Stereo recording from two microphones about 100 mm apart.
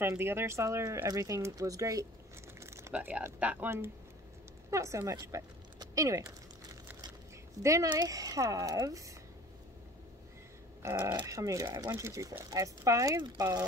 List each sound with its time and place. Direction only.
0.0 s speech: 25° right (ahead or behind)
2.6 s a sound: 30° right (ahead or behind)
2.9 s speech: 15° right (ahead or behind); by 5.5 s 30° right (ahead or behind)
5.8 s crumpling: 35° right (ahead or behind)
7.6 s speech: 30° right (ahead or behind)
10.8 s speech: 30° right (ahead or behind)